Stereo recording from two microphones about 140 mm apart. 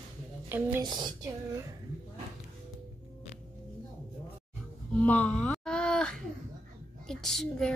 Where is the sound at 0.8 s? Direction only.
30° right (ahead or behind).